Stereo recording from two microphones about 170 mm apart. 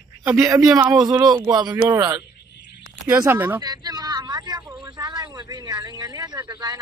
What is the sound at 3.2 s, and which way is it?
Speech, 15° right (ahead or behind).